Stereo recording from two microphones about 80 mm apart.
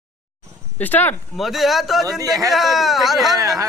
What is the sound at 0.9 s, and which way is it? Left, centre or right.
Speech, left.